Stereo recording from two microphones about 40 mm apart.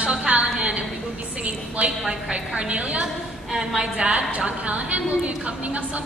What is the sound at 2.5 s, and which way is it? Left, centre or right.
A woman's voice, right.